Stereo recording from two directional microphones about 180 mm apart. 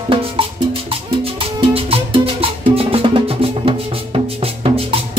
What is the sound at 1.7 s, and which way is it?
Music, 30° right (ahead or behind).